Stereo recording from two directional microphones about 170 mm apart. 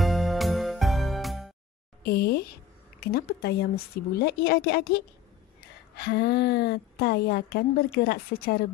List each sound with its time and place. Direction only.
0.0 s music: centre (ahead or behind)
2.0 s a woman's voice: 65° left (ahead or behind)